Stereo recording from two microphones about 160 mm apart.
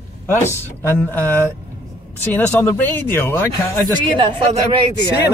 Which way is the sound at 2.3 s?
10° left (ahead or behind).